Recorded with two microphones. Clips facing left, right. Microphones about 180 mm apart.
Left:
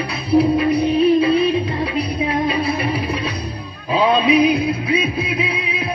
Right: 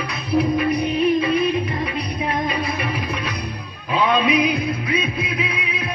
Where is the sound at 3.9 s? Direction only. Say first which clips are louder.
Left 4 dB; 35° left (ahead or behind).